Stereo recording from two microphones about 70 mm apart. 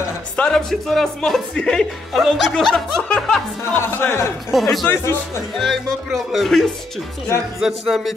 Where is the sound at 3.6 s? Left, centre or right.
Left.